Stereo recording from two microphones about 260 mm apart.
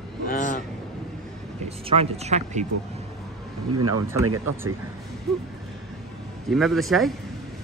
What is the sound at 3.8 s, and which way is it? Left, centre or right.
Speech, right.